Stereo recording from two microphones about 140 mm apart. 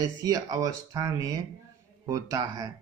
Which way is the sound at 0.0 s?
25° right (ahead or behind).